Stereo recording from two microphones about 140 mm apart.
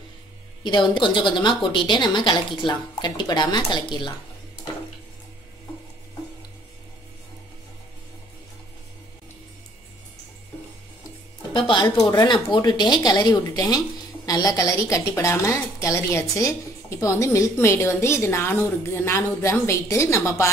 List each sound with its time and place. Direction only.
0.7 s a woman's voice: 35° left (ahead or behind)
11.5 s speech: 35° left (ahead or behind)